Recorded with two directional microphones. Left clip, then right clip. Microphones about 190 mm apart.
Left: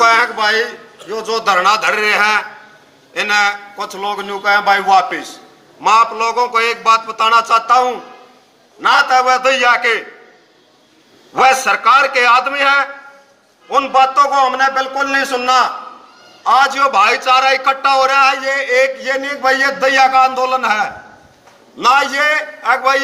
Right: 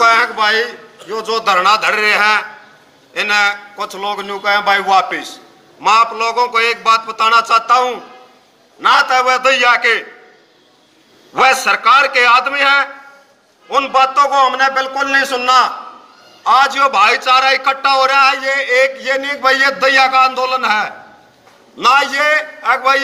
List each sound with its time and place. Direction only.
0.0 s a sound: 15° left (ahead or behind)
1.0 s a man's voice: 10° left (ahead or behind)
11.3 s a man's voice: 15° left (ahead or behind)